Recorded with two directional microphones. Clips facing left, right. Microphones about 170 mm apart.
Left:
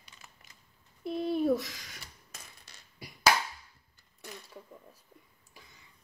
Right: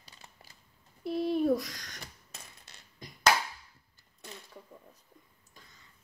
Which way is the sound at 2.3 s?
20° right (ahead or behind).